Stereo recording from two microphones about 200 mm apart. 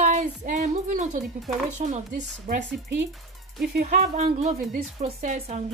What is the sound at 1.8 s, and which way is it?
Speech, 40° right (ahead or behind).